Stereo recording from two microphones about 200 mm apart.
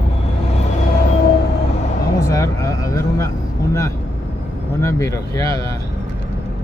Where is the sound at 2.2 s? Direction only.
15° left (ahead or behind).